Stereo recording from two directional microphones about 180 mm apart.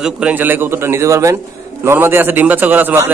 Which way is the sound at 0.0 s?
5° right (ahead or behind).